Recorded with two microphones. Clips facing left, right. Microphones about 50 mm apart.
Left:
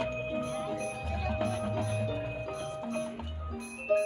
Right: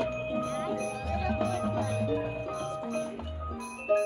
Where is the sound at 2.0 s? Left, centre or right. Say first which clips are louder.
Right 4 dB; centre.